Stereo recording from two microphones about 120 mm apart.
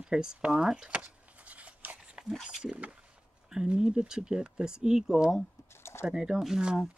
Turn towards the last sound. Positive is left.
turn(degrees=-5)  # may be behind; listen again after turning